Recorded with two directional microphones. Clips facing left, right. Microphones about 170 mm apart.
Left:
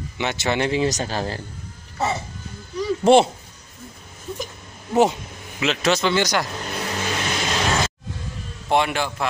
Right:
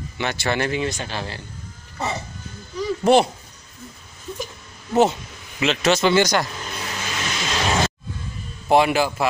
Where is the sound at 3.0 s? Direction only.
25° left (ahead or behind).